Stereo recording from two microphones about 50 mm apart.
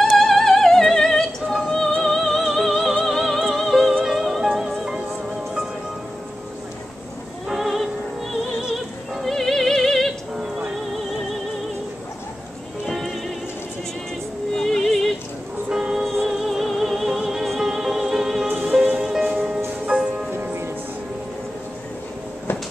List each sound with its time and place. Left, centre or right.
0.0 s opera: centre
2.0 s music: centre
3.6 s music: centre
7.4 s music: centre
10.3 s music: centre
12.8 s music: centre
14.5 s music: centre
15.7 s music: centre
20.3 s music: right